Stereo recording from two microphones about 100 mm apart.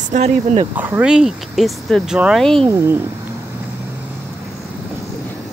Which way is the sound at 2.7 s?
25° right (ahead or behind).